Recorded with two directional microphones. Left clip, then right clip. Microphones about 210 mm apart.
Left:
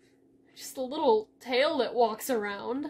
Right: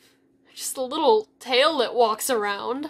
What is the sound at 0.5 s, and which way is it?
A woman's voice, centre (ahead or behind).